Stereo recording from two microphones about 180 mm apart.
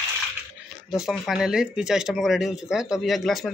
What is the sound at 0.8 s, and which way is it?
Speech, centre (ahead or behind).